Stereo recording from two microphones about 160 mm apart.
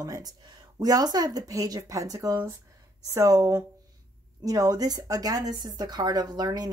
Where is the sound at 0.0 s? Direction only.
25° right (ahead or behind).